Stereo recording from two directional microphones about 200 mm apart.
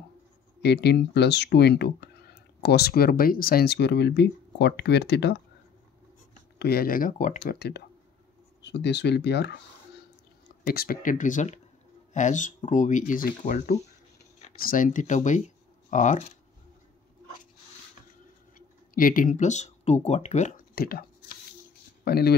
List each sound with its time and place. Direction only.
0.6 s speech: 55° left (ahead or behind)
6.6 s speech: 50° left (ahead or behind)
10.7 s speech: 50° left (ahead or behind)
18.9 s speech: 45° left (ahead or behind)